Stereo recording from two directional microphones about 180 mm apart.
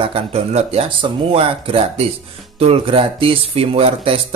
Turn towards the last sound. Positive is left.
turn(degrees=-30)  # may be behind; listen again after turning